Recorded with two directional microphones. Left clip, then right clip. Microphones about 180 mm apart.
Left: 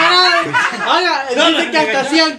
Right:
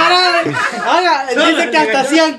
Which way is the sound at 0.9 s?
30° right (ahead or behind).